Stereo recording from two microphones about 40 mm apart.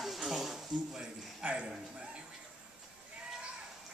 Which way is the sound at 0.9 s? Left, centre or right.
Right.